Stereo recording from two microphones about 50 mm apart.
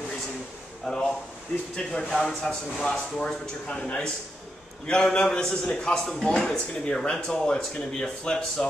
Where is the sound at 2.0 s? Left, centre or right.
Centre.